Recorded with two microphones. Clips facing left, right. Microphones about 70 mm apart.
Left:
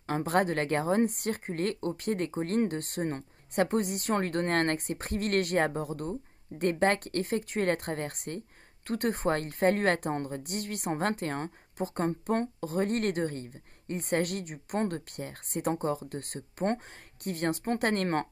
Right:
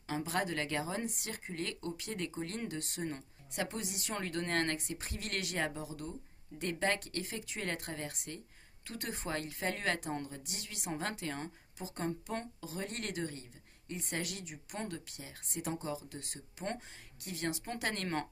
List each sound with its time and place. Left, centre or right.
0.0 s a woman's voice: left